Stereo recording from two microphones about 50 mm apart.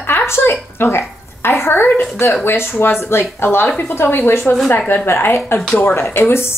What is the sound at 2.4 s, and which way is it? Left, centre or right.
A woman's voice, left.